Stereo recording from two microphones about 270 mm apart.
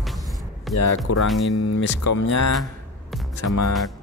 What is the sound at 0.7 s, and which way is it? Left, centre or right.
Speech, centre.